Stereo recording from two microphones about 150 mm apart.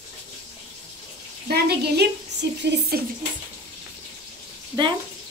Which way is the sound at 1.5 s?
90° right.